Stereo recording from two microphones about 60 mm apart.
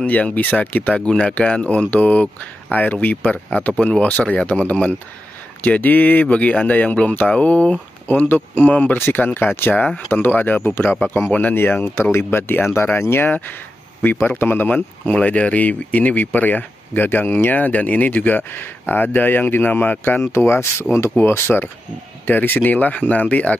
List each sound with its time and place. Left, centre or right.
0.0 s speech: left
8.9 s speech: left